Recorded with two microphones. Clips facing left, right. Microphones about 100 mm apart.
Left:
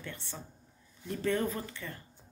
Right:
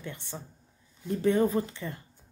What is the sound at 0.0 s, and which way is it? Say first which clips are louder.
Speech: right 4 dB; 15° right (ahead or behind).